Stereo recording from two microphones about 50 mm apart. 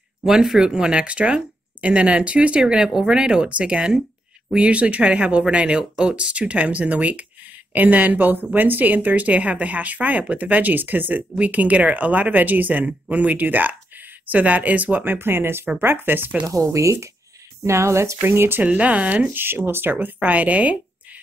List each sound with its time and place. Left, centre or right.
0.2 s speech: centre; by 2.6 s right
2.6 s speech: centre; by 15.1 s right
15.1 s speech: right
16.7 s speech: right
17.6 s speech: right
18.6 s speech: right
19.3 s speech: right